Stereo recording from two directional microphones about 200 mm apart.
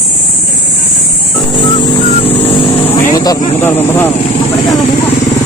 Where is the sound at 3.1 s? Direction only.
20° left (ahead or behind).